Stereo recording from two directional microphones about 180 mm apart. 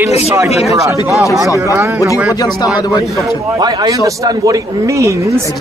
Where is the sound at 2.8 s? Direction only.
20° left (ahead or behind).